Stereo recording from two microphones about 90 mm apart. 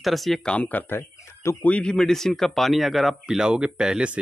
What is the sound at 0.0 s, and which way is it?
Speech, centre (ahead or behind).